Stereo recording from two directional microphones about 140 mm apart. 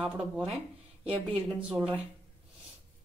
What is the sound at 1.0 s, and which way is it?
Speech, 45° right (ahead or behind).